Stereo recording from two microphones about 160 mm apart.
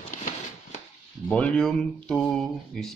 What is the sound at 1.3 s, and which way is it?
Speech, 5° left (ahead or behind).